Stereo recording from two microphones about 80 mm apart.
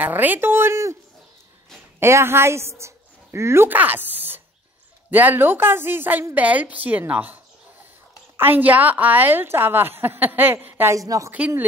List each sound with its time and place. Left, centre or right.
0.0 s a woman's voice: right
2.0 s a woman's voice: right
8.4 s a woman's voice: right
11.0 s a woman's voice: right
11.3 s speech: centre